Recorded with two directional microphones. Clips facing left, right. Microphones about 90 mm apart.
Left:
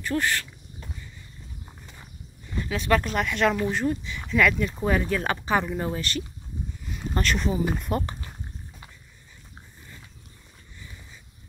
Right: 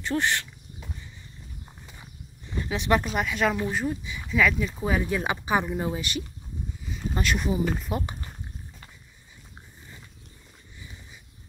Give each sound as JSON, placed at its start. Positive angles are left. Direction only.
{"t": 0.0, "sound": "speech", "side_deg": -20}
{"t": 2.5, "sound": "speech", "side_deg": -20}
{"t": 3.1, "sound": "speech", "side_deg": -5}